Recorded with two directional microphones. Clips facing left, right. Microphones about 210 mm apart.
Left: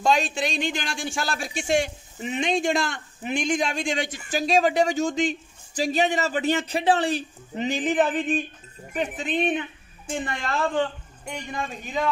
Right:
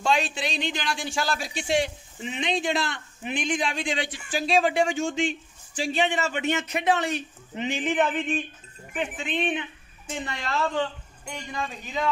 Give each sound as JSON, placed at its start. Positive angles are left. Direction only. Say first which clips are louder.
{"t": 0.0, "sound": "a man's voice", "louder": "left 3 dB", "side_deg": 40}